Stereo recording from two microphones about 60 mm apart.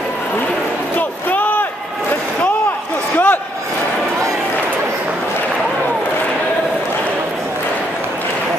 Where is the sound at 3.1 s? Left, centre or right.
Left.